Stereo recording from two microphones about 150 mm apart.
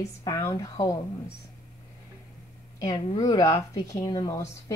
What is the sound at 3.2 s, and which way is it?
Speech, 25° left (ahead or behind).